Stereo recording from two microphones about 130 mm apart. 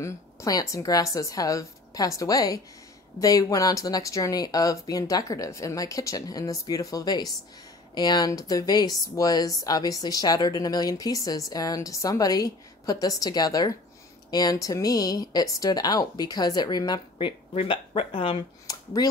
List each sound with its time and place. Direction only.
0.0 s speech: 25° left (ahead or behind)
17.6 s speech: 50° left (ahead or behind)
18.7 s a sound: 30° left (ahead or behind)